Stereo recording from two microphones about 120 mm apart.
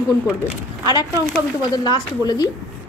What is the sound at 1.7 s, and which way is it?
Speech, 35° left (ahead or behind).